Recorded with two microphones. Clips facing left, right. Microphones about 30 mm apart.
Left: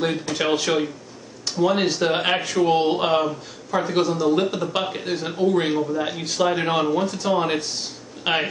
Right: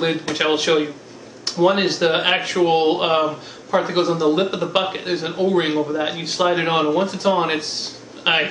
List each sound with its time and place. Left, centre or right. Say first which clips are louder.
0.0 s speech: right 3 dB; right